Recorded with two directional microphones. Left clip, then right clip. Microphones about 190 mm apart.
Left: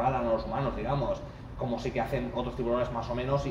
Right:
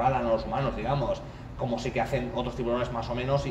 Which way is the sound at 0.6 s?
5° right (ahead or behind).